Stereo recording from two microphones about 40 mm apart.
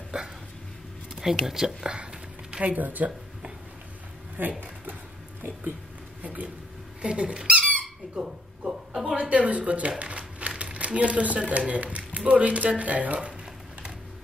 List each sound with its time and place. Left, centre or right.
0.1 s dog: right
1.1 s speech: centre
2.6 s speech: right
4.4 s speech: right
6.2 s speech: right
7.0 s speech: right
8.2 s speech: centre
9.1 s speech: right